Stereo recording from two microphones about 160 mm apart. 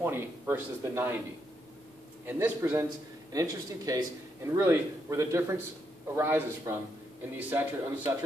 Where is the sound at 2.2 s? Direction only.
15° right (ahead or behind).